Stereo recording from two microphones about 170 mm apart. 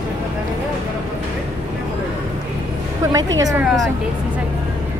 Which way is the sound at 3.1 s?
20° right (ahead or behind).